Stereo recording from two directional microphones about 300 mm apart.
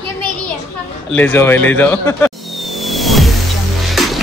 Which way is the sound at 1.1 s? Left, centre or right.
Centre.